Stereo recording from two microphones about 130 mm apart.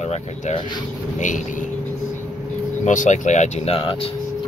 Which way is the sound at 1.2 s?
75° left (ahead or behind).